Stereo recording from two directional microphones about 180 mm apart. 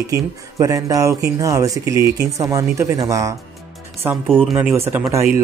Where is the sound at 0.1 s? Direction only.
15° right (ahead or behind).